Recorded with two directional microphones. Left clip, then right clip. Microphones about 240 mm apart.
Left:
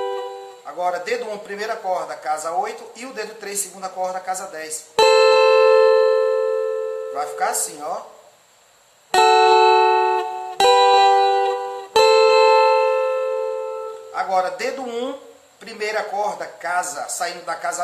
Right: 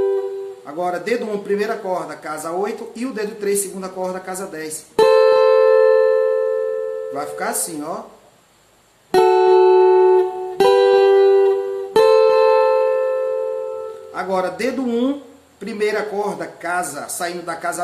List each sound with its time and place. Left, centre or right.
0.7 s a man's voice: centre
4.9 s music: left
7.2 s a man's voice: centre
9.1 s music: left
14.1 s a man's voice: centre